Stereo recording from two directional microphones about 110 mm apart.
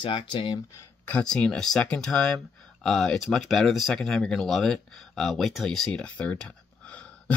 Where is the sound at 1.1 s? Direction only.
10° left (ahead or behind).